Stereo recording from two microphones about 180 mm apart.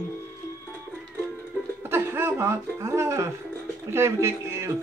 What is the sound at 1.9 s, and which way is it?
Speech, 15° right (ahead or behind).